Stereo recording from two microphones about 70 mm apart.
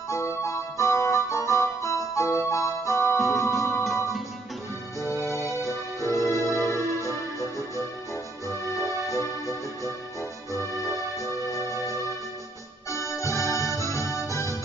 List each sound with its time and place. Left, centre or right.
0.1 s music: left
5.2 s music: left
10.5 s music: left
12.9 s music: left